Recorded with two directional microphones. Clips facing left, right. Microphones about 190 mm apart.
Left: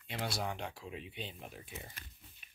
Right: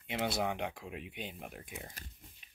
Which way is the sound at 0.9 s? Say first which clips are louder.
Right 1 dB; 10° right (ahead or behind).